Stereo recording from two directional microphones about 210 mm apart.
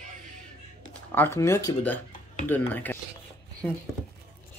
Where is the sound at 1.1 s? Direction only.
10° left (ahead or behind).